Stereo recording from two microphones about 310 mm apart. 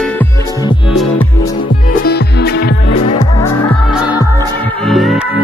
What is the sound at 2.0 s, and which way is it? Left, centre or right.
Music, left.